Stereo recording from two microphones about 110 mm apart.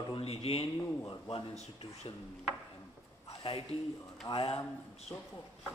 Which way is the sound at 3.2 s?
65° left (ahead or behind).